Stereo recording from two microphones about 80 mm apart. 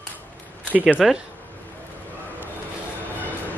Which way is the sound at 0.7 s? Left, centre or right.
Centre.